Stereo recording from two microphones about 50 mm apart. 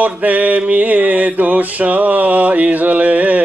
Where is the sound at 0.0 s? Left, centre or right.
Right.